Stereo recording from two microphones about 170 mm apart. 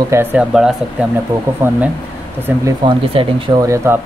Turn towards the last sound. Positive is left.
turn(degrees=-20)  # may be behind; listen again after turning